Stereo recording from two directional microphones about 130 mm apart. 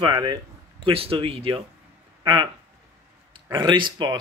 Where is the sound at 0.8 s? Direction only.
45° right (ahead or behind).